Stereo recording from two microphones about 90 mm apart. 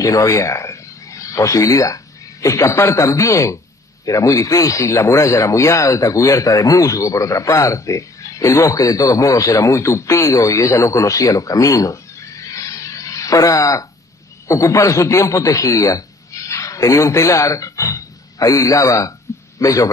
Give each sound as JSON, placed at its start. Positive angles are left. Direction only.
{"t": 0.0, "sound": "a man's voice", "side_deg": 40}